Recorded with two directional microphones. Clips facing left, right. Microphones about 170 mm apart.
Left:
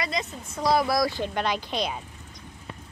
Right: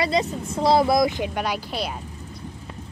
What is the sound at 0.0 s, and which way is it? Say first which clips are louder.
Speech: right 8 dB; 30° right (ahead or behind).